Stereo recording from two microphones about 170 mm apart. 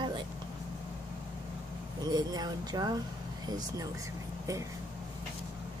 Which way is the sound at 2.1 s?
25° right (ahead or behind).